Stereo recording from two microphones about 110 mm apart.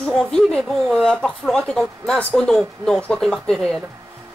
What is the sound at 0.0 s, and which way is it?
A woman's voice, 10° left (ahead or behind).